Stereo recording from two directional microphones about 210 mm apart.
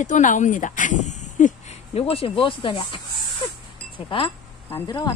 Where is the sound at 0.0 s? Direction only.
35° left (ahead or behind).